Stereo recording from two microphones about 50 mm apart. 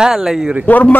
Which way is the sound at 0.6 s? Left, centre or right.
Left.